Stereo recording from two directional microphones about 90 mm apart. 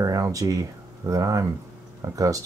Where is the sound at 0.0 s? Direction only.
40° right (ahead or behind).